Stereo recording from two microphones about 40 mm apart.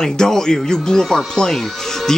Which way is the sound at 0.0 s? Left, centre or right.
Centre.